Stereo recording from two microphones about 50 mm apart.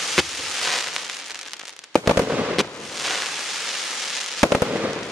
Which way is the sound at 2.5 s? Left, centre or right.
Centre.